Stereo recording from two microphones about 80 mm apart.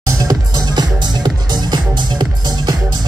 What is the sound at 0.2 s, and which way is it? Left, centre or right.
Music, right.